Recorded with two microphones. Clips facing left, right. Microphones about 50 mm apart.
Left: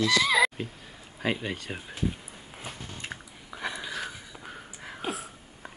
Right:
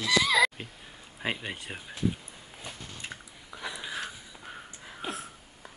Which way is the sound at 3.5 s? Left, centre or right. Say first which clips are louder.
Left 4 dB; left.